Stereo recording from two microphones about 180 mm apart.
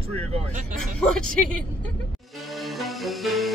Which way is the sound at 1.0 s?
5° left (ahead or behind).